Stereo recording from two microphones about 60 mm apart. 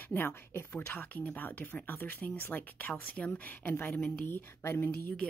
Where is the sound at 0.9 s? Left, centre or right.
Left.